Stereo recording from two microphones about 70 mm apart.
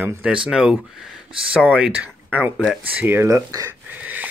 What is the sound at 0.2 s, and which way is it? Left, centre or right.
Speech, centre.